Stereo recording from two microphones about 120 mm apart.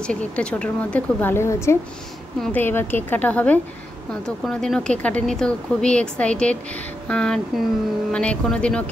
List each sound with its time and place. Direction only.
0.0 s speech: 10° left (ahead or behind)